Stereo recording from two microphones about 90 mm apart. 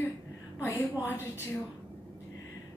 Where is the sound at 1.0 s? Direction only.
25° left (ahead or behind).